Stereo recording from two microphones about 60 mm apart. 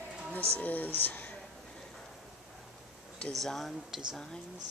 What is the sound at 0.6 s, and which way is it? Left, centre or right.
Speech, left.